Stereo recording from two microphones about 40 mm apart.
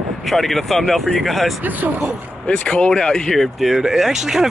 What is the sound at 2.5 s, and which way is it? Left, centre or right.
Speech, centre.